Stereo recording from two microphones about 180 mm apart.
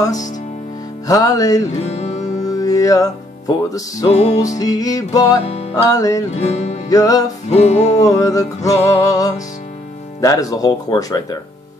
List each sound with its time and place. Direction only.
1.0 s music: 20° left (ahead or behind)
1.8 s music: 35° left (ahead or behind)
2.4 s music: 20° left (ahead or behind)
4.1 s music: 40° left (ahead or behind)
4.6 s music: 20° left (ahead or behind)
5.4 s music: 35° left (ahead or behind)
5.9 s music: 20° left (ahead or behind)
6.3 s music: 35° left (ahead or behind)
6.9 s music: 20° left (ahead or behind)
7.4 s music: 40° left (ahead or behind)
8.0 s music: 20° left (ahead or behind)